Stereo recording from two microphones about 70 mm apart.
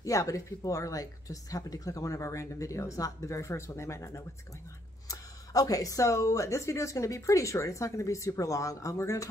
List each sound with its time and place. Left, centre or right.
0.0 s speech: left
5.0 s speech: left